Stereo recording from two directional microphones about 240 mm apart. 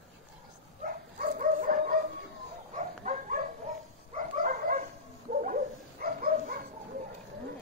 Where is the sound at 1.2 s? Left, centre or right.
Right.